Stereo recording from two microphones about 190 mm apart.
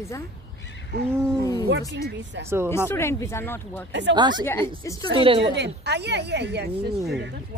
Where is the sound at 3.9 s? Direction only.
70° right (ahead or behind).